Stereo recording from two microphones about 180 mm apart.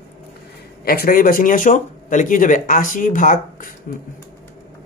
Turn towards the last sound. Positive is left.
turn(degrees=45)  # may be behind; listen again after turning